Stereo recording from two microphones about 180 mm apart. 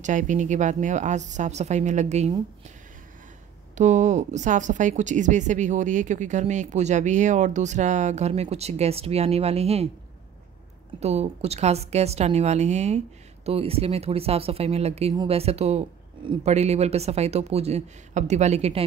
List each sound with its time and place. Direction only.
0.0 s speech: 45° right (ahead or behind)
3.7 s speech: 40° right (ahead or behind)
11.0 s speech: 35° right (ahead or behind)